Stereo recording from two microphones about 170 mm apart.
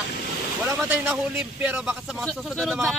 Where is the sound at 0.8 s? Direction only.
10° right (ahead or behind).